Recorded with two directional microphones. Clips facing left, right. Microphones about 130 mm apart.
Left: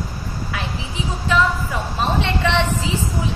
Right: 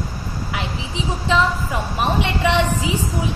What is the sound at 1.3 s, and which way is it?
A woman's voice, 15° right (ahead or behind).